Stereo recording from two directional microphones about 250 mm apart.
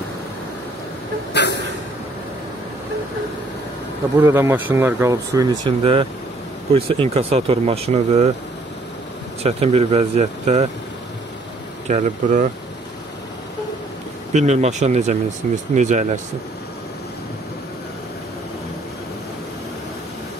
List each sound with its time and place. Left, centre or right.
1.3 s a sound: left
4.2 s speech: centre; by 8.3 s right
9.4 s speech: right
11.9 s speech: right
14.3 s speech: right